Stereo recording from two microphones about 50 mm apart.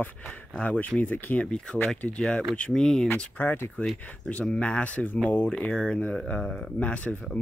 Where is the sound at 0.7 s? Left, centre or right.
Left.